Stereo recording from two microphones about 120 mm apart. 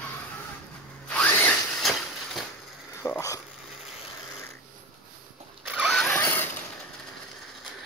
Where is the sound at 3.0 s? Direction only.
25° left (ahead or behind).